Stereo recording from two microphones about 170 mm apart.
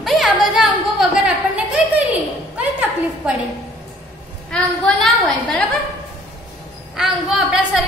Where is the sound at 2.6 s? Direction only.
5° right (ahead or behind).